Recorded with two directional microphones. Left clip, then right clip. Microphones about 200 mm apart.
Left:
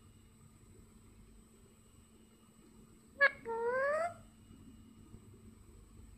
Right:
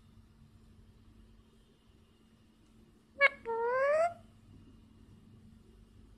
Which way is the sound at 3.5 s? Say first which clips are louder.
Right 4 dB; 25° right (ahead or behind).